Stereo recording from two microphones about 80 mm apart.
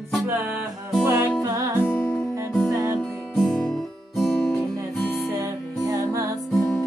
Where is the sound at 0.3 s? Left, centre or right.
Right.